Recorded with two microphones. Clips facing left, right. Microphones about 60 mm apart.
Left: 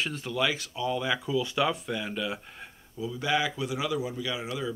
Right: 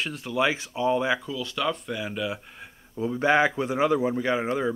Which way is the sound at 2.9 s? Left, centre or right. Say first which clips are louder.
Right 7 dB; right.